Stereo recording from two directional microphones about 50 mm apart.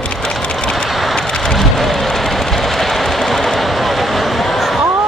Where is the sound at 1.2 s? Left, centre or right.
Centre.